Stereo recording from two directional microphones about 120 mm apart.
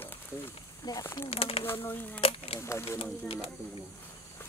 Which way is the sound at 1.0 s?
20° left (ahead or behind).